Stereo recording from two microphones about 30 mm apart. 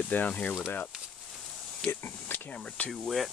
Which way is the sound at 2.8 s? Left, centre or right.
Left.